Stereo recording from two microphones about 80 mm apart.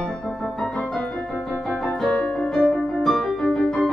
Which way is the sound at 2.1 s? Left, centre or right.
Centre.